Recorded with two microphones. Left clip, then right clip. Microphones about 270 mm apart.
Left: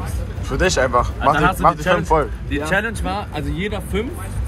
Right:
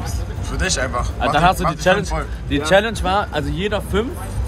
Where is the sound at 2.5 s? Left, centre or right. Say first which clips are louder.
Right 9 dB; right.